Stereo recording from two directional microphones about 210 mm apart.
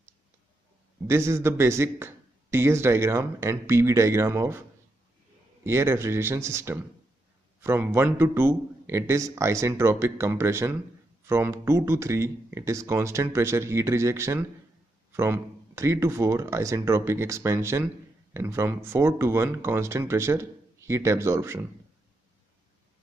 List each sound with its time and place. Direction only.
1.0 s a man's voice: 10° right (ahead or behind)